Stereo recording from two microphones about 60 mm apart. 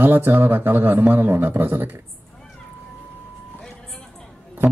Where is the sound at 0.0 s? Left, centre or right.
Right.